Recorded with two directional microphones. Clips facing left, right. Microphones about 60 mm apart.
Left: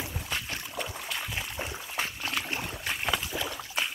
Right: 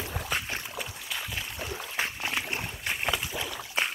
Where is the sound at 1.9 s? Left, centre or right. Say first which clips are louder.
Right 1 dB; centre.